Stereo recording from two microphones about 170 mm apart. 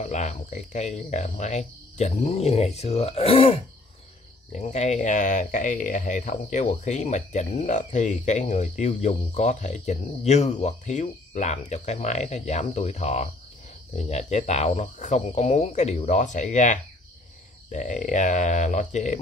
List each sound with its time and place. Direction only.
0.0 s speech: 40° left (ahead or behind)
4.5 s speech: 45° left (ahead or behind)